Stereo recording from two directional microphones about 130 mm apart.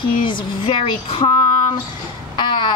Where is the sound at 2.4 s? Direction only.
35° left (ahead or behind).